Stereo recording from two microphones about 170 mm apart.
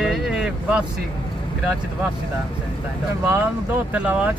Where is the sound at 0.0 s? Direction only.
5° right (ahead or behind).